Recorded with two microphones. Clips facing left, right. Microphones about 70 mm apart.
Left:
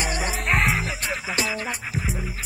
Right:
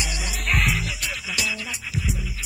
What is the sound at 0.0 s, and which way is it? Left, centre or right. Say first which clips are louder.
Music: left 4 dB; left.